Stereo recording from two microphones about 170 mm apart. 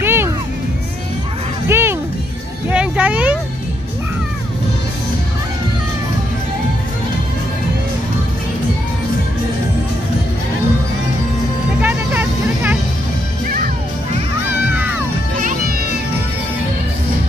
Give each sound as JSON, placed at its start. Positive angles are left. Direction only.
{"t": 0.0, "sound": "music", "side_deg": -15}
{"t": 1.7, "sound": "music", "side_deg": -15}
{"t": 2.7, "sound": "a sound", "side_deg": -5}
{"t": 11.8, "sound": "vehicle", "side_deg": -10}
{"t": 15.3, "sound": "music", "side_deg": -50}